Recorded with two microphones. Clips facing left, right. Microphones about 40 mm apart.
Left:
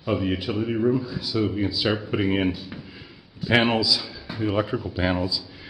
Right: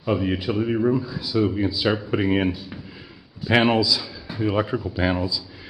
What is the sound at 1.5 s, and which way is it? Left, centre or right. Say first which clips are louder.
Speech: right 2 dB; centre.